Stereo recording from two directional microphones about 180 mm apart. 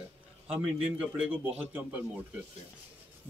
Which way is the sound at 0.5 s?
5° right (ahead or behind).